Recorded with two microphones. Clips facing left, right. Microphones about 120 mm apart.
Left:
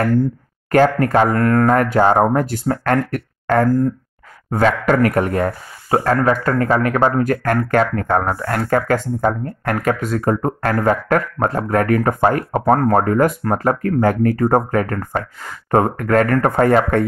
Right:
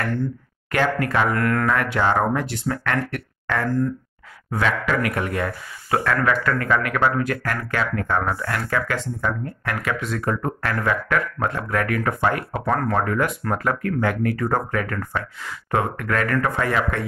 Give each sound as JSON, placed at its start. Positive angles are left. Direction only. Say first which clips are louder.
{"t": 0.0, "sound": "speech", "louder": "left 8 dB", "side_deg": 40}